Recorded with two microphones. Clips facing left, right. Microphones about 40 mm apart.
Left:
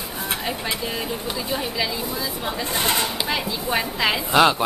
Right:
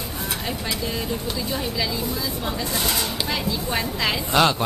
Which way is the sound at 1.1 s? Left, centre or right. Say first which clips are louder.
Even; centre.